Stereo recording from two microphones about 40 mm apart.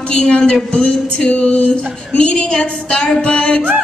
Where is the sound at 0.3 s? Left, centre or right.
Left.